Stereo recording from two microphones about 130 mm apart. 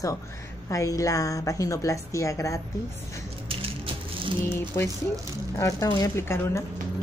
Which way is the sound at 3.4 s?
45° right (ahead or behind).